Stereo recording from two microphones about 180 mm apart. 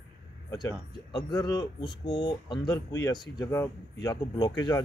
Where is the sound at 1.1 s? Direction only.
20° left (ahead or behind).